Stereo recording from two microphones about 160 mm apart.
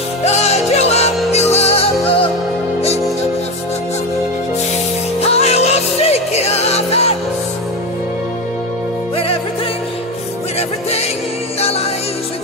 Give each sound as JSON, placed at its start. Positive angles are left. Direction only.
{"t": 0.2, "sound": "music", "side_deg": 45}
{"t": 5.2, "sound": "music", "side_deg": 40}